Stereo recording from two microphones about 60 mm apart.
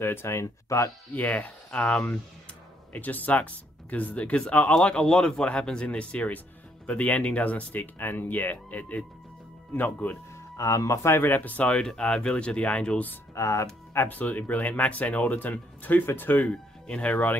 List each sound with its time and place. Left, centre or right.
0.0 s speech: left
1.1 s speech: left
2.9 s speech: left
10.3 s speech: left
11.1 s speech: left; by 13.0 s centre
13.3 s speech: left
13.9 s speech: left
16.4 s speech: centre